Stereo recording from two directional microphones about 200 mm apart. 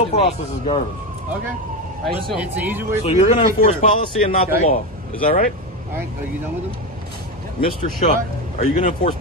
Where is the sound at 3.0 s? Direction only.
30° left (ahead or behind).